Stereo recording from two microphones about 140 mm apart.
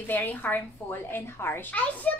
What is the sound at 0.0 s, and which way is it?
A child's voice, 15° left (ahead or behind).